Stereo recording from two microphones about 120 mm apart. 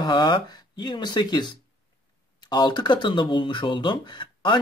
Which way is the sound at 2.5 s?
40° left (ahead or behind).